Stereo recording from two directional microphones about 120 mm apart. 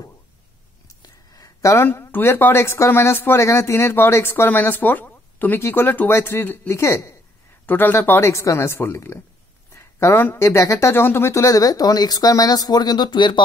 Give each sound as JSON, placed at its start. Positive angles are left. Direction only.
{"t": 1.0, "sound": "speech", "side_deg": 30}